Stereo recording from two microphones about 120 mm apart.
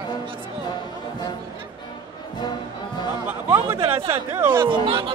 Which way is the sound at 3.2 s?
20° right (ahead or behind).